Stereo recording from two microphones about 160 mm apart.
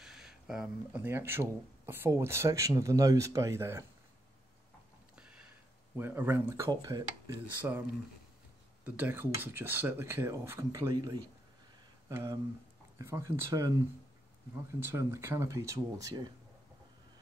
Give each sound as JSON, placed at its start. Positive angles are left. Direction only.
{"t": 0.0, "sound": "a sound", "side_deg": -5}
{"t": 1.0, "sound": "speech", "side_deg": -15}
{"t": 5.9, "sound": "speech", "side_deg": -15}
{"t": 8.8, "sound": "speech", "side_deg": -10}
{"t": 12.1, "sound": "speech", "side_deg": -15}
{"t": 14.8, "sound": "speech", "side_deg": -15}